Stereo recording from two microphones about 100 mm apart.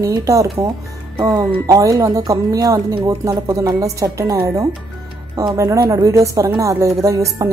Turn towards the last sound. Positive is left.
turn(degrees=-30)  # may be behind; listen again after turning